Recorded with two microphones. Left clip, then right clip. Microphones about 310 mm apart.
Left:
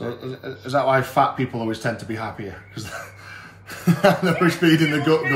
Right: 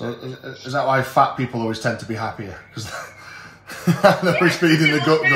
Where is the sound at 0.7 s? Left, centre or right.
Centre.